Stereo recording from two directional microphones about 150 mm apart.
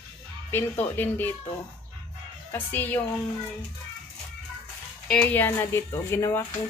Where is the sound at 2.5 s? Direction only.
10° left (ahead or behind).